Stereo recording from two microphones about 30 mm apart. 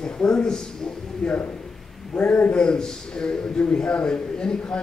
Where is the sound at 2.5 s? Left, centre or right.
Left.